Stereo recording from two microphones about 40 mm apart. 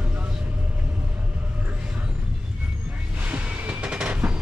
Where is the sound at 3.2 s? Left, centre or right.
Right.